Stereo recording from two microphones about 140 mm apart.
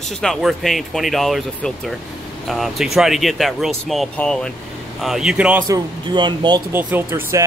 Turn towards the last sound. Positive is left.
turn(degrees=-20)  # may be behind; listen again after turning